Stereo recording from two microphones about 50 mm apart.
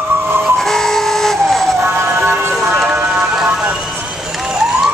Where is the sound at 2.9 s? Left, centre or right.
Centre.